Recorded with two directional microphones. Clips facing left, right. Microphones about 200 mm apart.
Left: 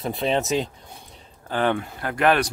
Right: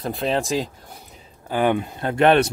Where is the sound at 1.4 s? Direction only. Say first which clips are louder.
Right 3 dB; 15° right (ahead or behind).